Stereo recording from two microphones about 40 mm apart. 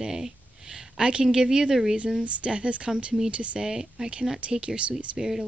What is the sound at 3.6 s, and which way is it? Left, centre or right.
Speech, centre.